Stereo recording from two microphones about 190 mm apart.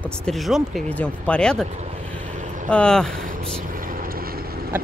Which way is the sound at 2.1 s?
40° right (ahead or behind).